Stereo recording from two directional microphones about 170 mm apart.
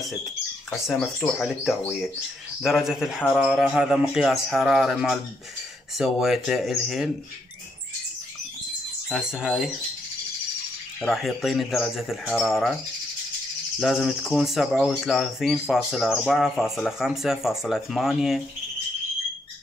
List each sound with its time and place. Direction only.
0.7 s speech: centre (ahead or behind)
9.1 s speech: 5° right (ahead or behind)
11.0 s speech: centre (ahead or behind)
13.7 s speech: centre (ahead or behind)